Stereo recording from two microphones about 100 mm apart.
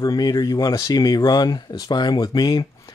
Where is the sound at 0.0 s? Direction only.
40° left (ahead or behind).